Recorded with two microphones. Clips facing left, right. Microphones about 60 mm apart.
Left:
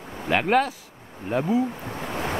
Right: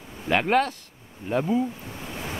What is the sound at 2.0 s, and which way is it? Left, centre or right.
Waves, left.